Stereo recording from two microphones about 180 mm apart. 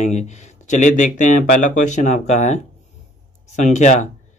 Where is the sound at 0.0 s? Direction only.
40° left (ahead or behind).